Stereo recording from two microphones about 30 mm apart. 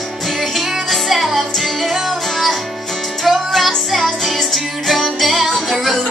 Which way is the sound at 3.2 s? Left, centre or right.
Centre.